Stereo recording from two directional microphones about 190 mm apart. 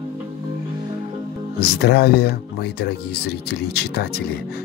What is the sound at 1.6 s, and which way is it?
Speech, 55° left (ahead or behind).